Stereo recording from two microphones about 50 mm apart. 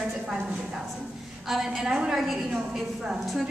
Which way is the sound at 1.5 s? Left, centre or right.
Centre.